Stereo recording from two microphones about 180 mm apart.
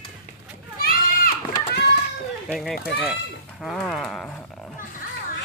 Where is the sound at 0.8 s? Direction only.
55° left (ahead or behind).